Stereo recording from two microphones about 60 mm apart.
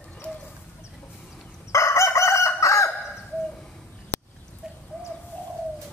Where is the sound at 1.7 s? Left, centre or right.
Left.